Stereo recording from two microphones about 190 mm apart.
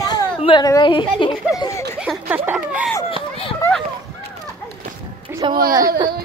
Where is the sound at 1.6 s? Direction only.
15° left (ahead or behind).